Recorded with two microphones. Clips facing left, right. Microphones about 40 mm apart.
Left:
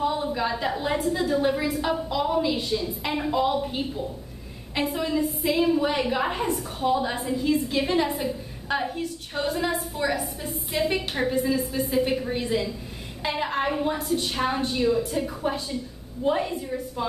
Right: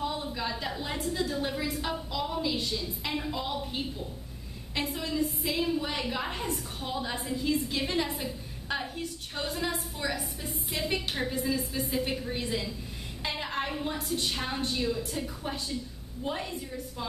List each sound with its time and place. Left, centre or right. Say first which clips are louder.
0.0 s a woman's voice: left 8 dB; centre
1.7 s a woman's voice: left 7 dB; centre
2.0 s a woman's voice: left 8 dB; centre
13.2 s a sound: left 7 dB; centre
13.9 s a woman's voice: left 5 dB; centre
14.3 s a woman's voice: left 7 dB; centre